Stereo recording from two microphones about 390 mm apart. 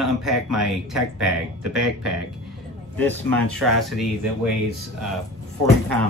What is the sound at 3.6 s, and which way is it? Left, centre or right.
Speech, centre.